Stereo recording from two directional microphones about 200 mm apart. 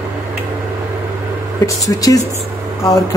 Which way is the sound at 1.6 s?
15° left (ahead or behind).